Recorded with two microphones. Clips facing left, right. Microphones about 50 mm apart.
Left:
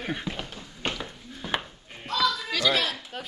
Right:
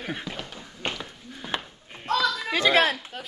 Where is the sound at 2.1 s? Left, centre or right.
Right.